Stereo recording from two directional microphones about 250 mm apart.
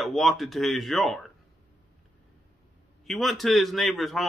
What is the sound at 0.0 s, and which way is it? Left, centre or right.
Speech, centre.